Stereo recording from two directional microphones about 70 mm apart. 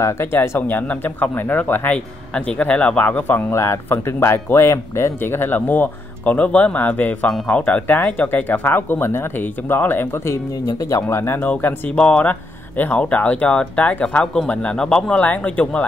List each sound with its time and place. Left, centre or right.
0.0 s speech: left
10.8 s speech: left
11.9 s speech: centre